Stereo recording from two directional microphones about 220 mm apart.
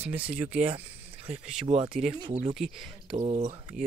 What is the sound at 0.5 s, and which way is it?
Speech, 25° right (ahead or behind).